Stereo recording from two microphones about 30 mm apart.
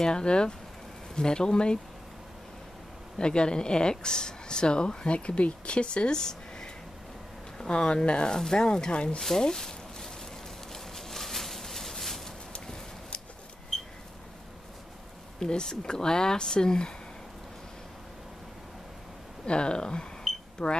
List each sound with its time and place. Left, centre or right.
0.1 s speech: left
3.2 s speech: left
8.4 s speech: left
8.9 s speech: left
9.4 s a sound: centre
15.4 s speech: left
19.4 s speech: left